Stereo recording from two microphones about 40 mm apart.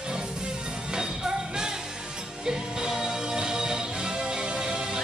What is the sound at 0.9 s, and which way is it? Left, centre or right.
Music, centre.